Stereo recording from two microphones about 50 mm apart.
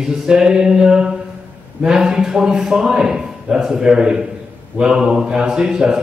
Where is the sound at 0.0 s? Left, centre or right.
Centre.